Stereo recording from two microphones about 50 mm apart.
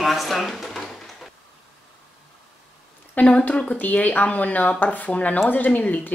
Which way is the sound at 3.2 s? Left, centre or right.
Left.